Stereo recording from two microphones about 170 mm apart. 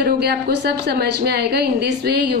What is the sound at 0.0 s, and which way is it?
A woman's voice, 70° right (ahead or behind).